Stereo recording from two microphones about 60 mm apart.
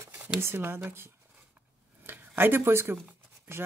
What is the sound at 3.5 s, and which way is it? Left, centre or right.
Speech, right.